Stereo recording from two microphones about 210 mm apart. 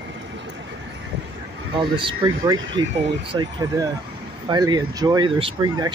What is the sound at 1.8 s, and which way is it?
Speech, 25° right (ahead or behind).